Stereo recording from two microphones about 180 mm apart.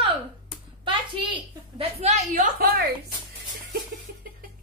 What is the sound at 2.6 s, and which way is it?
Speech, 55° right (ahead or behind).